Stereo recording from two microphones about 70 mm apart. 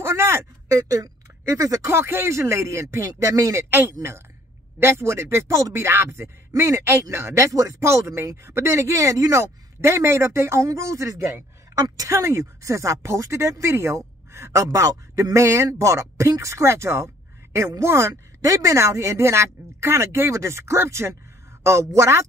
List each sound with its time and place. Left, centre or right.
0.0 s a sound: right
0.7 s speech: right
1.9 s speech: right
4.7 s speech: right
9.4 s speech: right
11.7 s a woman's voice: right
12.1 s speech: right
18.4 s speech: right